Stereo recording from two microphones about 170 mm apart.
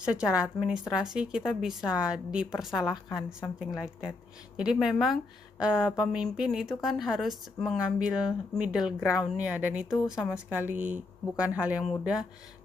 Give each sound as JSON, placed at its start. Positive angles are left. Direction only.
{"t": 0.0, "sound": "a woman's voice", "side_deg": -5}
{"t": 10.8, "sound": "speech", "side_deg": -45}
{"t": 11.3, "sound": "speech", "side_deg": -5}